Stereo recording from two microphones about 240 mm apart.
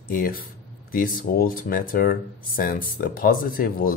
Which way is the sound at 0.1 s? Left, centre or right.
Left.